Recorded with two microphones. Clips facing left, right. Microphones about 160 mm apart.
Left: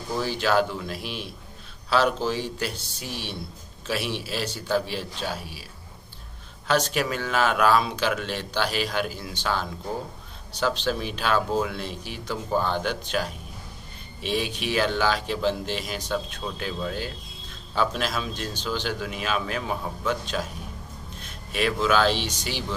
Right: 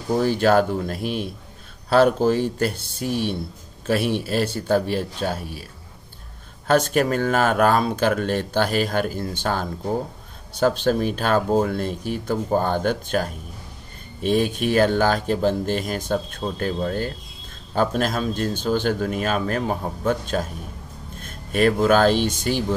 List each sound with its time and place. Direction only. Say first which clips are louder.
0.1 s speech: right 6 dB; 55° right (ahead or behind)
6.7 s speech: right 6 dB; 50° right (ahead or behind)